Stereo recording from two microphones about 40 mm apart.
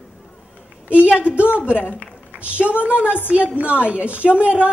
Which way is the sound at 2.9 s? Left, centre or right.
Right.